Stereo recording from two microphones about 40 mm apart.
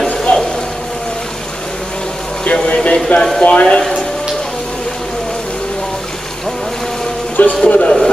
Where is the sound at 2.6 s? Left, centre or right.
Left.